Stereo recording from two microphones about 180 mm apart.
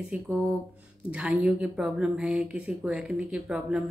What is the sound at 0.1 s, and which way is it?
A woman's voice, 5° right (ahead or behind).